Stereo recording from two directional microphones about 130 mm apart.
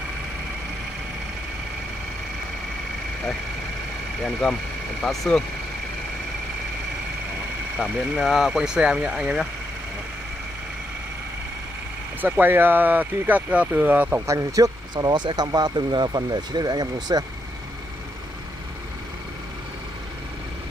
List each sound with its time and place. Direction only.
4.4 s speech: 5° left (ahead or behind)
7.8 s speech: centre (ahead or behind)
12.2 s speech: 15° right (ahead or behind); by 17.2 s 30° right (ahead or behind)